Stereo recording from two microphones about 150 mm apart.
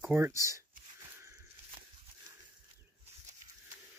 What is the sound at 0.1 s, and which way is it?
Speech, 15° right (ahead or behind).